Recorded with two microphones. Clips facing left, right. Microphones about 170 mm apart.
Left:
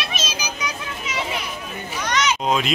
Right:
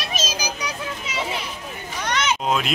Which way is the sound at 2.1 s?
55° right (ahead or behind).